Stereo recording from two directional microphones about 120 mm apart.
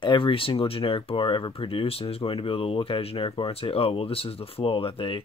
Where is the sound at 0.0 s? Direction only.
45° left (ahead or behind).